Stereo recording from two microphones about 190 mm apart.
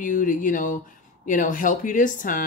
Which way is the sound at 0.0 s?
45° left (ahead or behind).